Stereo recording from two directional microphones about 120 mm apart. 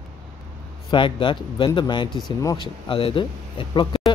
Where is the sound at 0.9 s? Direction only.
45° left (ahead or behind).